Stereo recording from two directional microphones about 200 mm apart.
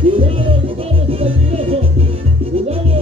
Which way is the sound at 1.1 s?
30° right (ahead or behind).